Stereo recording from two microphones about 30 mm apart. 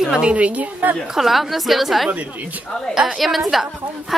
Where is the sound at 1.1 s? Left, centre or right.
Centre.